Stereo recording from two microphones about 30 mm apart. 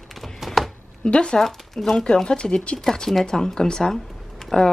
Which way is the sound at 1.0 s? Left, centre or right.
Left.